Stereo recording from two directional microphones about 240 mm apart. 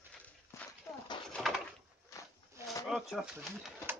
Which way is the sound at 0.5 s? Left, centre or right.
Centre.